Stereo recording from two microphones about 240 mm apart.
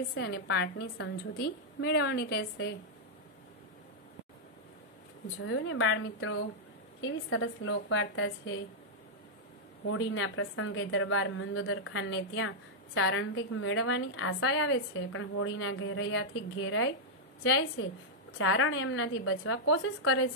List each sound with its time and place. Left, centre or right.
0.1 s a woman's voice: left
5.5 s a woman's voice: left
9.8 s a woman's voice: left